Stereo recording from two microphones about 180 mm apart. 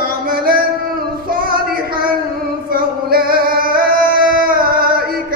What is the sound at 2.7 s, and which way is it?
Female singing, 55° right (ahead or behind).